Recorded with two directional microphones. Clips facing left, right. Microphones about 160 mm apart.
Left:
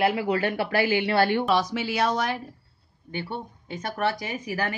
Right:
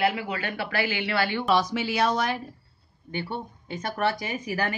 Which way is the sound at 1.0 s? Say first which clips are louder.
Left 5 dB; 45° left (ahead or behind).